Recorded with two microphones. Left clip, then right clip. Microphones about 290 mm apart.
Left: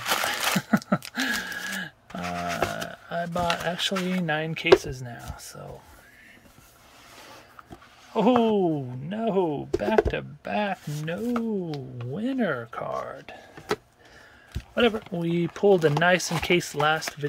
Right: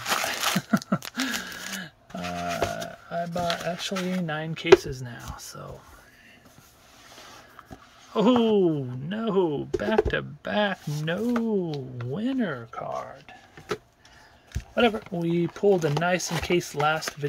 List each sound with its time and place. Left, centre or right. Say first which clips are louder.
0.0 s a sound: left 1 dB; centre
4.7 s speech: right 2 dB; centre
8.1 s speech: even; centre
13.0 s whispering: left 4 dB; centre
14.5 s speech: even; centre